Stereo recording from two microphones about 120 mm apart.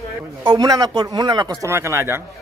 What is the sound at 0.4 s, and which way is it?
A man's voice, 35° right (ahead or behind).